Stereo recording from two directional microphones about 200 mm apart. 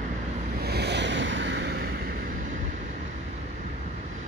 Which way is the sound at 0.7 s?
55° right (ahead or behind).